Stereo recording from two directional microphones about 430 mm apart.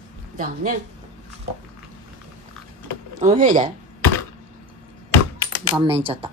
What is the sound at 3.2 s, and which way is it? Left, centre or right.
Speech, centre.